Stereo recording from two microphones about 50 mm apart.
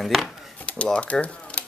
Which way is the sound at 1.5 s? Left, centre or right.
Left.